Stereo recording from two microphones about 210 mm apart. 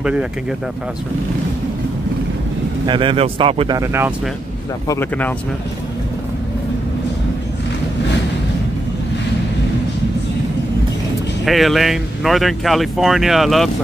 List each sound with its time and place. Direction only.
0.0 s speech: 5° right (ahead or behind)
2.9 s speech: 25° right (ahead or behind)
4.8 s speech: 10° left (ahead or behind)
11.4 s speech: centre (ahead or behind)